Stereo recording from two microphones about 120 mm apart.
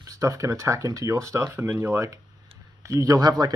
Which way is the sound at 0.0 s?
30° right (ahead or behind).